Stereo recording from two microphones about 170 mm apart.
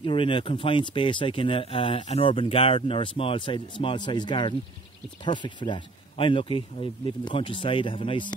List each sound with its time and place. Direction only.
0.0 s speech: 30° left (ahead or behind)